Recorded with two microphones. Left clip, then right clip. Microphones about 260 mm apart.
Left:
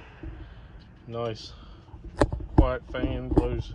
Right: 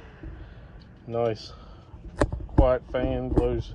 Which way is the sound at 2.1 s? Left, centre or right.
Centre.